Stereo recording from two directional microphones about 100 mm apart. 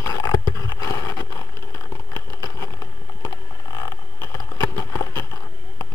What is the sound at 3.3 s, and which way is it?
Boat, 35° left (ahead or behind).